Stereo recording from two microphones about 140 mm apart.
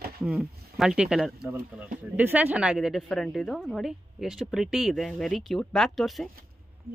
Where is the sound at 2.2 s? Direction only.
10° right (ahead or behind).